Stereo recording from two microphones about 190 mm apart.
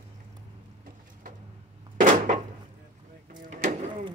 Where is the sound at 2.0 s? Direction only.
45° right (ahead or behind).